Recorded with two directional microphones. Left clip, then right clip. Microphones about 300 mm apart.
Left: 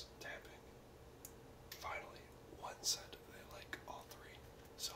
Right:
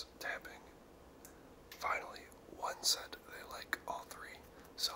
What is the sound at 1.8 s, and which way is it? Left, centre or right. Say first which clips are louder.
Whispering: right 9 dB; right.